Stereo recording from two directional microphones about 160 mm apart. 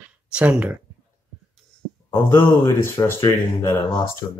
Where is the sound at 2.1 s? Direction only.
15° left (ahead or behind).